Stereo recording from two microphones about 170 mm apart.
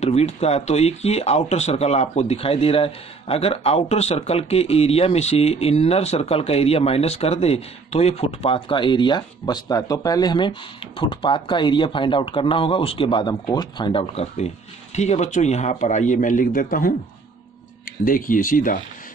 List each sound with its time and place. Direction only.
0.0 s a man's voice: 40° left (ahead or behind)